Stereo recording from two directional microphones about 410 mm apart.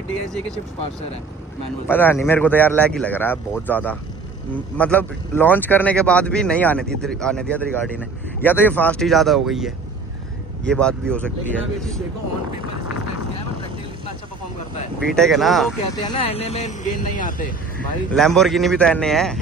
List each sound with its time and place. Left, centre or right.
1.9 s speech: centre
15.0 s speech: centre
16.1 s speech: centre
18.1 s speech: centre